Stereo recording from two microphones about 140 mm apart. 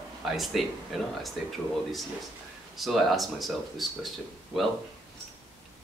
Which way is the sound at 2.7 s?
Centre (ahead or behind).